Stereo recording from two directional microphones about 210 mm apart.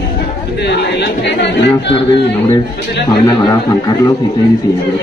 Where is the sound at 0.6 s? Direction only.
55° left (ahead or behind).